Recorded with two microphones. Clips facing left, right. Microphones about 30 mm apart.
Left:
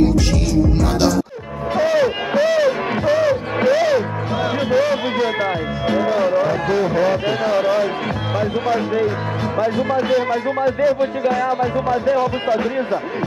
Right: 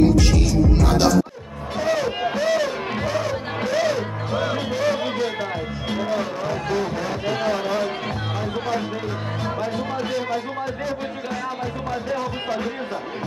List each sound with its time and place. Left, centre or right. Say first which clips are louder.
0.3 s music: left 2 dB; centre
1.8 s a sound: left 5 dB; centre
2.4 s music: left 7 dB; centre
8.4 s speech: left 7 dB; centre